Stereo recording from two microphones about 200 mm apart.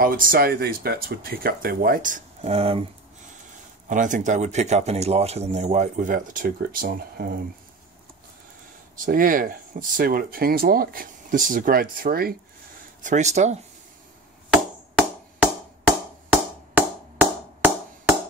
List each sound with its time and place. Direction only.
0.0 s speech: 45° right (ahead or behind); by 2.8 s 30° right (ahead or behind)
3.9 s speech: 40° right (ahead or behind)
8.9 s speech: 45° right (ahead or behind)
13.0 s speech: 35° right (ahead or behind)
16.7 s music: 10° right (ahead or behind)